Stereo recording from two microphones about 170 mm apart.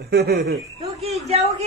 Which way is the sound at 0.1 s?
70° right (ahead or behind).